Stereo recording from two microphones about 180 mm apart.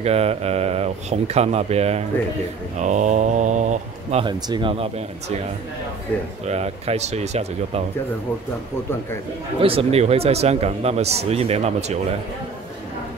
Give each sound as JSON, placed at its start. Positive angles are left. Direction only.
{"t": 0.0, "sound": "a man's voice", "side_deg": -35}
{"t": 4.2, "sound": "speech", "side_deg": -25}
{"t": 6.4, "sound": "a man's voice", "side_deg": -35}
{"t": 9.6, "sound": "a man's voice", "side_deg": -30}